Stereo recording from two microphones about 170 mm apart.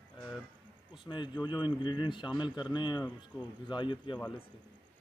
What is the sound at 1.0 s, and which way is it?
Speech, 25° left (ahead or behind).